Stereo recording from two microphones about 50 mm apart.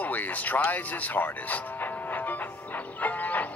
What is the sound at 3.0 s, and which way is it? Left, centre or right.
Music, left.